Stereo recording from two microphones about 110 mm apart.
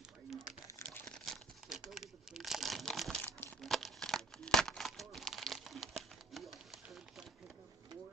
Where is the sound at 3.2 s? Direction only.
20° left (ahead or behind).